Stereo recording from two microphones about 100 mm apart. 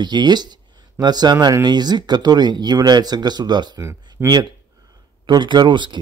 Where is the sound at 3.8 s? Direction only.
25° right (ahead or behind).